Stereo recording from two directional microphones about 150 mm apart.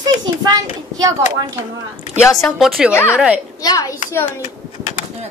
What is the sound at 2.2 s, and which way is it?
Speech, 20° left (ahead or behind).